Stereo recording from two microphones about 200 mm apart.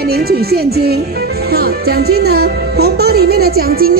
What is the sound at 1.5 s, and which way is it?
Speech, 50° right (ahead or behind).